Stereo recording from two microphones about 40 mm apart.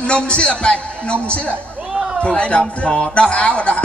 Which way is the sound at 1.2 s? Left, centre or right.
Left.